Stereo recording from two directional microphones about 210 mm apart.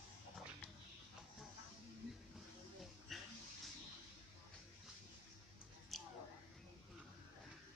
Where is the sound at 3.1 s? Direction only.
Centre (ahead or behind).